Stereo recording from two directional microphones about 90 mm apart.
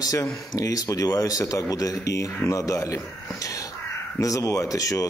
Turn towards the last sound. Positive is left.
turn(degrees=40)  # may be behind; listen again after turning